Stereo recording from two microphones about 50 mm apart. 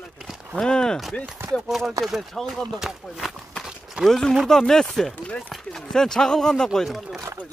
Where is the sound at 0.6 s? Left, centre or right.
Centre.